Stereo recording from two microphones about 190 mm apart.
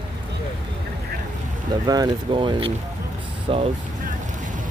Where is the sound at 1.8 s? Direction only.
20° right (ahead or behind).